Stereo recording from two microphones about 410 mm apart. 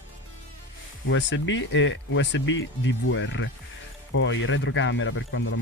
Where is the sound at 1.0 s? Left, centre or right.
Left.